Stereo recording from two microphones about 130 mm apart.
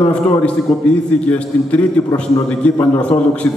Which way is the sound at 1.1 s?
10° left (ahead or behind).